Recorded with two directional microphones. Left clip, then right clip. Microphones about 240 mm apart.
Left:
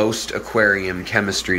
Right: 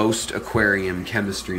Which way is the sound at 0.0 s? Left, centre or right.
Centre.